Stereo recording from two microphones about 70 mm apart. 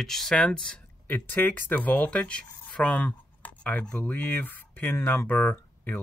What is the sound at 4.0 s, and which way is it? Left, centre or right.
Speech, left.